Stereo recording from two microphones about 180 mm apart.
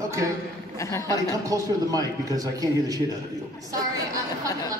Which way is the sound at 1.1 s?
20° right (ahead or behind).